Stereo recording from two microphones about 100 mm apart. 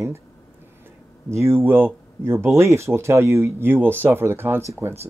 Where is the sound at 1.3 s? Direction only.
25° right (ahead or behind).